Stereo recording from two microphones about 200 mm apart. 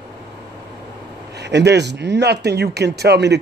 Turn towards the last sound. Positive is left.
turn(degrees=-55)  # may be behind; listen again after turning